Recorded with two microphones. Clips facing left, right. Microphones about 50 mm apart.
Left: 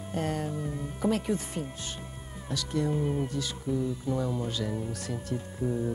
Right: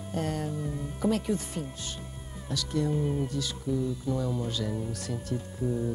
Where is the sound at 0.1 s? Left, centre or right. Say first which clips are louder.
Even; left.